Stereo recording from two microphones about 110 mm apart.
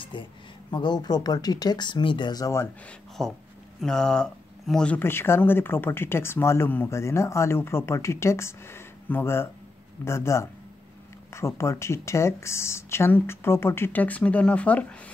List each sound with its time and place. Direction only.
0.1 s speech: 50° left (ahead or behind)
3.2 s speech: 5° left (ahead or behind)